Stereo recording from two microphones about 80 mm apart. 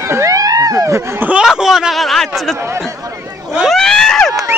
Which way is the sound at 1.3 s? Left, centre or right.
Centre.